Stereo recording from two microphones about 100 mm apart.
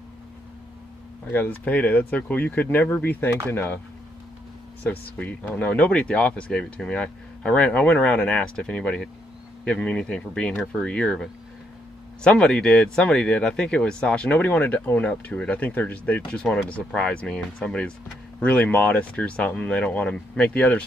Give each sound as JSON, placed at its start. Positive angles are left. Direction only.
{"t": 1.3, "sound": "speech", "side_deg": 20}
{"t": 5.1, "sound": "speech", "side_deg": 15}